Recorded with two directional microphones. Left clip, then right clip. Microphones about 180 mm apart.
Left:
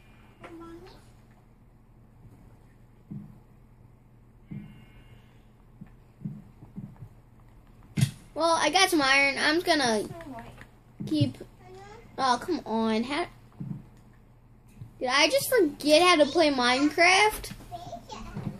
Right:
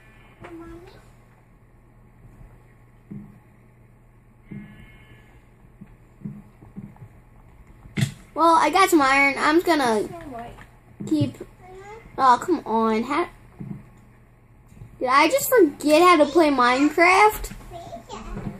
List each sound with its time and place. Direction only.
8.4 s a child's voice: 10° right (ahead or behind)
12.2 s a child's voice: 10° right (ahead or behind)
15.0 s a child's voice: 10° right (ahead or behind)